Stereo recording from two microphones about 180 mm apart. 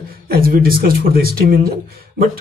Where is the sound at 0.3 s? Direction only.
55° right (ahead or behind).